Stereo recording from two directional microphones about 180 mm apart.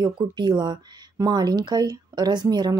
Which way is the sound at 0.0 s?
25° right (ahead or behind).